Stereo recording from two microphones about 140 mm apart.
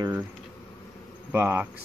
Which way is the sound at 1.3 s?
15° right (ahead or behind).